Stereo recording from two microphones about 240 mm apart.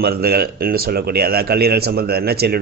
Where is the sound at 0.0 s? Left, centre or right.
Right.